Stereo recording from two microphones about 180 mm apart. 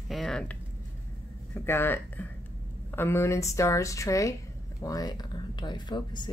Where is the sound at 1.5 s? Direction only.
15° left (ahead or behind).